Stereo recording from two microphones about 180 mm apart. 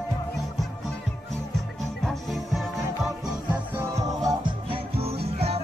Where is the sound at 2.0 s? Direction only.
Centre (ahead or behind).